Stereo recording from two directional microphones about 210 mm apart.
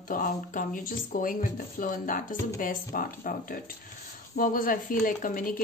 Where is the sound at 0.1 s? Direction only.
40° left (ahead or behind).